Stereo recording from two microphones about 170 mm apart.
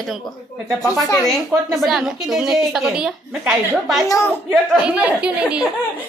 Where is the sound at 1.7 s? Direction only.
Centre (ahead or behind).